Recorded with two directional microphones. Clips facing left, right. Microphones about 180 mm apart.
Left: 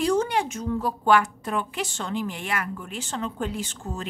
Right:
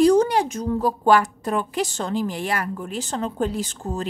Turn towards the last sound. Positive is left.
turn(degrees=-35)  # may be behind; listen again after turning